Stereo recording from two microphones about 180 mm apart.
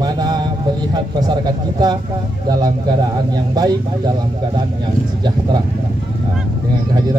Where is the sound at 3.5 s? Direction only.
20° right (ahead or behind).